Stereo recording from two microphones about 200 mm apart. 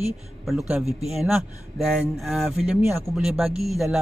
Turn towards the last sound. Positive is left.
turn(degrees=0)  # may be behind; listen again after turning